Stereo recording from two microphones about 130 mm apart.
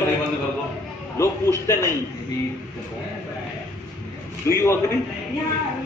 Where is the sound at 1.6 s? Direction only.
20° left (ahead or behind).